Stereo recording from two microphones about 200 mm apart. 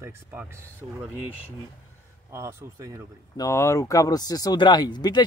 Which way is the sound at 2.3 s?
15° right (ahead or behind).